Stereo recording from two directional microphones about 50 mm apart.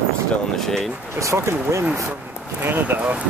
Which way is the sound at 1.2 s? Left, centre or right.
Right.